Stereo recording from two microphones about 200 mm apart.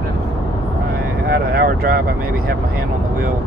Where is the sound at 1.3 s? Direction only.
50° right (ahead or behind).